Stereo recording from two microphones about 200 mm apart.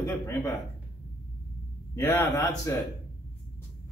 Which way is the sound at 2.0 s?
15° left (ahead or behind).